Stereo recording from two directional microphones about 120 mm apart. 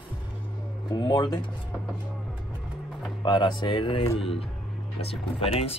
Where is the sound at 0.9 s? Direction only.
40° left (ahead or behind).